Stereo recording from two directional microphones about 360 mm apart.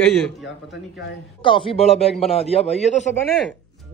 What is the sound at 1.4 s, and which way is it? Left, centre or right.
A man's voice, centre.